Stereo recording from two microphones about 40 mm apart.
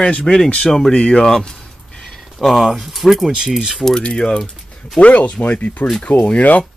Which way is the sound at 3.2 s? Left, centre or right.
Centre.